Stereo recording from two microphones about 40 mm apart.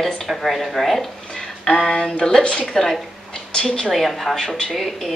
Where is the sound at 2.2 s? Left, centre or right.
Centre.